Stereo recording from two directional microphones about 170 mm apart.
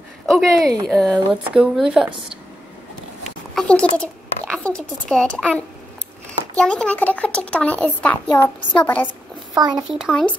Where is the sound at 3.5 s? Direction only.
5° left (ahead or behind).